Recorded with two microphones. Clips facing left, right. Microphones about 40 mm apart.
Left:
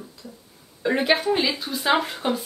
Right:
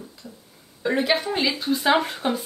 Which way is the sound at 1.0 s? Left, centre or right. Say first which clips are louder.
Left 1 dB; centre.